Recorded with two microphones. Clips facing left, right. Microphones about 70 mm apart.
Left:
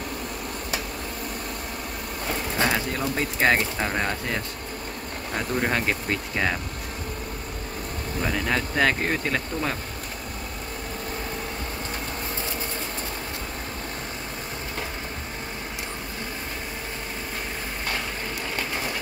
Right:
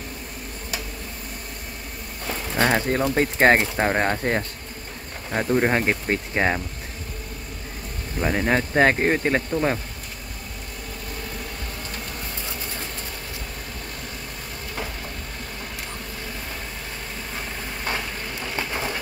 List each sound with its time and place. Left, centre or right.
2.6 s speech: right
5.3 s speech: right
8.2 s speech: right